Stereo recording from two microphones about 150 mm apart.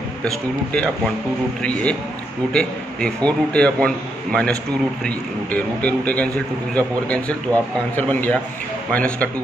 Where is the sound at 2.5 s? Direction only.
10° left (ahead or behind).